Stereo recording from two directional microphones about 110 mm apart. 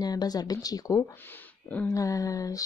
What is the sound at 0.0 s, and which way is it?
Speech, 35° left (ahead or behind).